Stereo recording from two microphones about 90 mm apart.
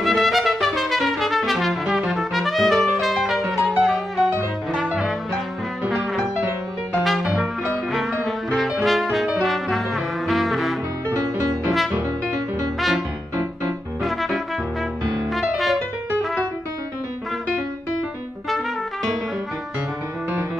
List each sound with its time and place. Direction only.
0.0 s trumpet: centre (ahead or behind)
4.7 s music: 5° right (ahead or behind)
7.0 s brass instrument: centre (ahead or behind)
11.1 s music: 35° right (ahead or behind)
14.0 s music: centre (ahead or behind)